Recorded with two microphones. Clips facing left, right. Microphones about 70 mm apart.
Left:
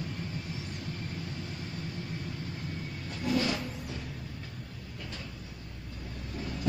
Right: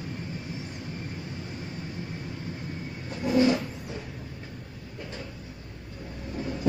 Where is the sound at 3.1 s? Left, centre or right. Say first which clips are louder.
Right 8 dB; right.